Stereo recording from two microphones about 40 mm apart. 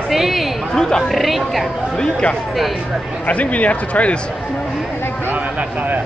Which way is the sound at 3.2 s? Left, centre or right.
Left.